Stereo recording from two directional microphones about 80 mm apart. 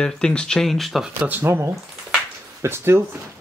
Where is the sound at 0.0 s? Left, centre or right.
Centre.